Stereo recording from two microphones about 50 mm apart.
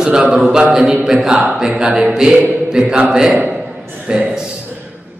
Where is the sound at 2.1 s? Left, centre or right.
Centre.